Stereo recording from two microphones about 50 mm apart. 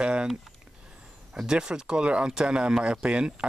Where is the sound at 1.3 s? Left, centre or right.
Centre.